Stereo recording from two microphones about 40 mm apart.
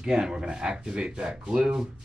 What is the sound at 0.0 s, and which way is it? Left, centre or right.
Speech, centre.